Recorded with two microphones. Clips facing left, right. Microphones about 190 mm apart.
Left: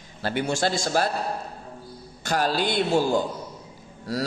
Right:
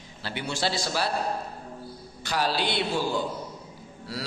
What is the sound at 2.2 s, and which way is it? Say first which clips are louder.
A man's voice: left 3 dB; 50° left (ahead or behind).